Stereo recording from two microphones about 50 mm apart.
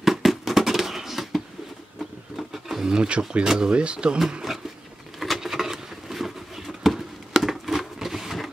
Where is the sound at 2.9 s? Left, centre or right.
Centre.